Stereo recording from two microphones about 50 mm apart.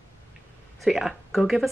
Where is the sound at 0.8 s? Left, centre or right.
Centre.